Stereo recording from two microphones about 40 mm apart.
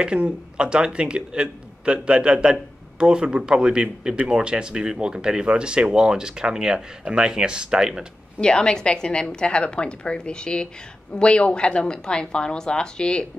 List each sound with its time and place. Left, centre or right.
0.0 s speech: right
8.4 s a woman's voice: left